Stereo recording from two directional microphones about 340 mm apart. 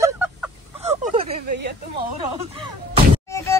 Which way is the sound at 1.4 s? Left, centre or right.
Right.